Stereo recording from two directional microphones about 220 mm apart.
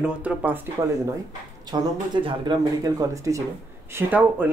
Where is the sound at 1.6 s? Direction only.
20° right (ahead or behind).